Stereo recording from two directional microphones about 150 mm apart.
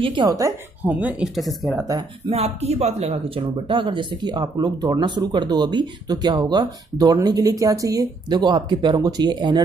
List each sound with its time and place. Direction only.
0.0 s speech: 35° right (ahead or behind)
0.8 s speech: 10° right (ahead or behind)
1.9 s speech: 30° right (ahead or behind)
2.3 s speech: 45° right (ahead or behind); by 9.6 s 30° right (ahead or behind)